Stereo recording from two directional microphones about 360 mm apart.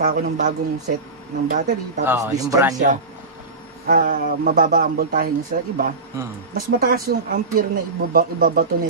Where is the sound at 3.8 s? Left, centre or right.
Right.